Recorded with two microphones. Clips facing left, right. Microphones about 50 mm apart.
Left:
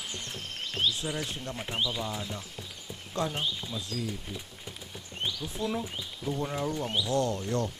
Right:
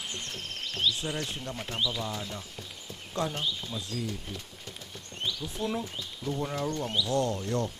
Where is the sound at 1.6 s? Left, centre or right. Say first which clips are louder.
Even; centre.